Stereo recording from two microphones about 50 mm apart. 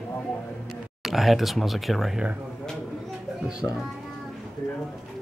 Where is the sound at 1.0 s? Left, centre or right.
Centre.